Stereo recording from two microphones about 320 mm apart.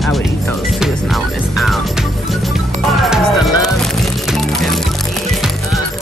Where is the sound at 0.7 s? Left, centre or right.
Centre.